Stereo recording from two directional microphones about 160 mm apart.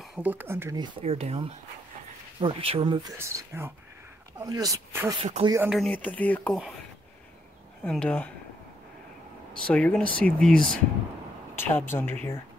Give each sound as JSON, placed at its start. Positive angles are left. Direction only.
{"t": 0.2, "sound": "speech", "side_deg": -10}
{"t": 0.7, "sound": "speech", "side_deg": -35}
{"t": 3.2, "sound": "speech", "side_deg": -15}
{"t": 5.2, "sound": "speech", "side_deg": -40}
{"t": 5.7, "sound": "speech", "side_deg": 5}
{"t": 7.8, "sound": "speech", "side_deg": 10}
{"t": 9.5, "sound": "speech", "side_deg": 5}